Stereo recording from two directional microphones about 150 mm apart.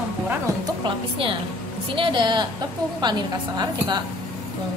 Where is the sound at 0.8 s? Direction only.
35° right (ahead or behind).